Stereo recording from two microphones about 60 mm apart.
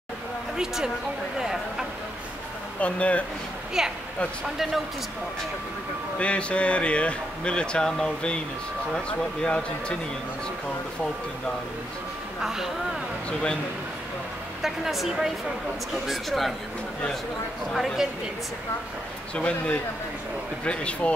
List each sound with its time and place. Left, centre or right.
0.6 s speech: centre
2.8 s speech: left
3.8 s speech: centre
6.1 s speech: centre
12.4 s speech: centre
14.6 s a woman's voice: centre
17.7 s a woman's voice: centre
19.3 s speech: centre